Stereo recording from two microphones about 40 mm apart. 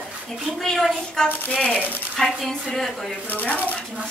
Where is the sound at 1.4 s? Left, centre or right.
Left.